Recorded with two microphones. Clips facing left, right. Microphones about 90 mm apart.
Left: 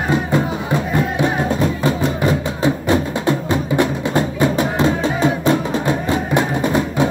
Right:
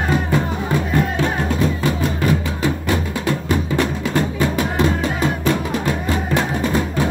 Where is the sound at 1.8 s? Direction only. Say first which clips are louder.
Left 2 dB; 25° left (ahead or behind).